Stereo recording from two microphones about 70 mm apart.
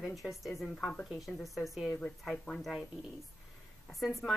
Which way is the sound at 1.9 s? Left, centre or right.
Centre.